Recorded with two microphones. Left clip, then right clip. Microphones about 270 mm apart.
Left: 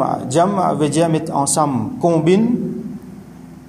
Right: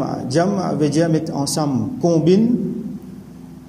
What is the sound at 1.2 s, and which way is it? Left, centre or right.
Speech, left.